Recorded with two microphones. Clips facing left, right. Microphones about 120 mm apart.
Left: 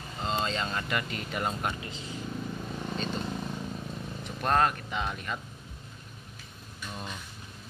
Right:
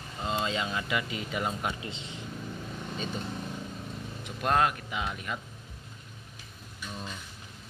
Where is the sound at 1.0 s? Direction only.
55° left (ahead or behind).